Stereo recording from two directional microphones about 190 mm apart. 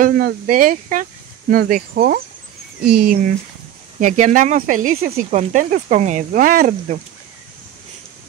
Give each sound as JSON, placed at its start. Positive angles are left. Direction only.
{"t": 0.0, "sound": "speech", "side_deg": -50}